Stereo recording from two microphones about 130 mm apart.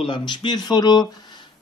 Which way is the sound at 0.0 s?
40° left (ahead or behind).